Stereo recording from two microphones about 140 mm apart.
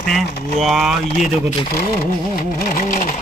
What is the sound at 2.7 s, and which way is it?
Sewing machine, 70° left (ahead or behind).